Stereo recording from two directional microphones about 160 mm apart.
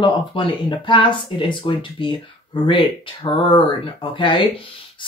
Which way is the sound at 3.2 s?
30° left (ahead or behind).